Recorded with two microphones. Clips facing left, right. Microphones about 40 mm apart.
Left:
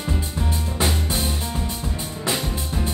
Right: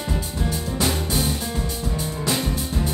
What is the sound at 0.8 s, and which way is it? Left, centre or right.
Music, centre.